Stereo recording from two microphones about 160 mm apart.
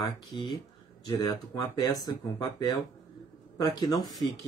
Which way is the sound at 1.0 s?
20° left (ahead or behind).